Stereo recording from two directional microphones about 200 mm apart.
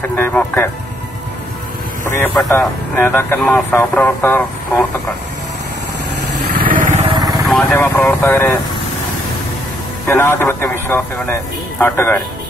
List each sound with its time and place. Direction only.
0.0 s speech: 10° left (ahead or behind)
2.0 s speech: 15° left (ahead or behind)
6.7 s vehicle: 40° right (ahead or behind)
7.1 s vehicle: 20° right (ahead or behind)
7.4 s speech: 5° left (ahead or behind)
10.0 s speech: 10° left (ahead or behind)